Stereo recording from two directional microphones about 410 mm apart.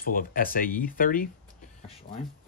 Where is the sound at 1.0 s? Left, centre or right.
Centre.